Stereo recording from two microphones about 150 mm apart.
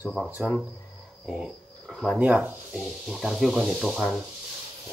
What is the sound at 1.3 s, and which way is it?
Speech, centre (ahead or behind).